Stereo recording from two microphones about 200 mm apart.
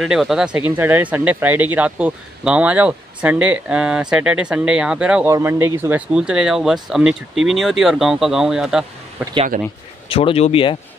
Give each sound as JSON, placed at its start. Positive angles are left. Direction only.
{"t": 0.0, "sound": "speech", "side_deg": 0}
{"t": 9.2, "sound": "speech", "side_deg": -25}
{"t": 10.0, "sound": "speech", "side_deg": 30}